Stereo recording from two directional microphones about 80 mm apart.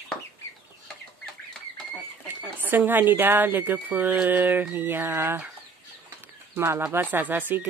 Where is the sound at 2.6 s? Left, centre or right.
Right.